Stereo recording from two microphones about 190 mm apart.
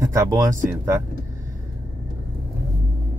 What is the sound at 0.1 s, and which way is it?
Speech, 15° right (ahead or behind).